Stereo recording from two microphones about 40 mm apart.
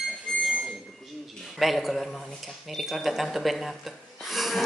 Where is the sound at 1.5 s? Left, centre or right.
Centre.